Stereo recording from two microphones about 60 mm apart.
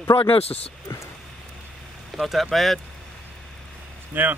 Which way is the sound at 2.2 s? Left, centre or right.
Centre.